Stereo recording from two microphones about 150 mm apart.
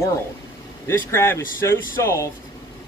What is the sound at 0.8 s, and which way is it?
Speech, 15° left (ahead or behind).